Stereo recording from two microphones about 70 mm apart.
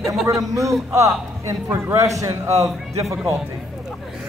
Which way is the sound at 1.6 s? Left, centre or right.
Right.